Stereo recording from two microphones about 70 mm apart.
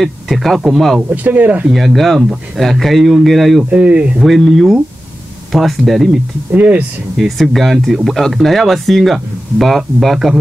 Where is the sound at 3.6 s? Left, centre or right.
Centre.